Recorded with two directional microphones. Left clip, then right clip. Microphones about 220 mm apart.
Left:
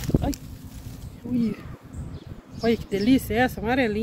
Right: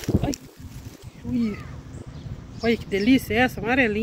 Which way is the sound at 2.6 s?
10° left (ahead or behind).